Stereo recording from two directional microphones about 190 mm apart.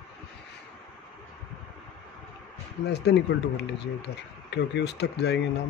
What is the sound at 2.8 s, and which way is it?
Speech, 60° left (ahead or behind).